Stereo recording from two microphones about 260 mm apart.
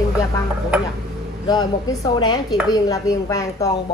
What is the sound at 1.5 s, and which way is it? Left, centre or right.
Speech, centre.